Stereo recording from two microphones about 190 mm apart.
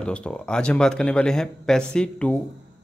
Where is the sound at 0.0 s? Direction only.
5° left (ahead or behind).